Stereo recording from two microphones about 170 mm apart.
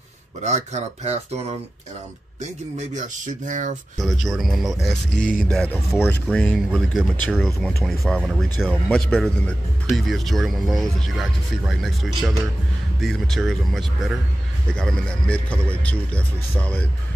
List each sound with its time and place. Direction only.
0.4 s speech: 45° right (ahead or behind)
2.9 s speech: 50° right (ahead or behind)
4.0 s speech: centre (ahead or behind)